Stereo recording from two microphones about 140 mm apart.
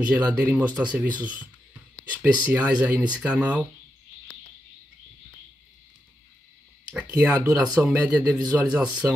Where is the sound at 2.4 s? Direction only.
10° right (ahead or behind).